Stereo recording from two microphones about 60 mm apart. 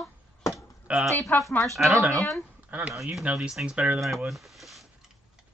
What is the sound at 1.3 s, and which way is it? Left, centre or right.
Speech, left.